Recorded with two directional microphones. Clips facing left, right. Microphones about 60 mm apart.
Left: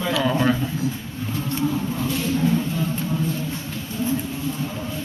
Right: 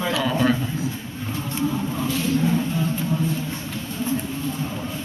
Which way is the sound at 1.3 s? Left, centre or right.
Centre.